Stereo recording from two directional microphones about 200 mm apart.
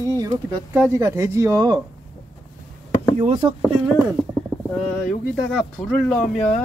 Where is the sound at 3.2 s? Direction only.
30° right (ahead or behind).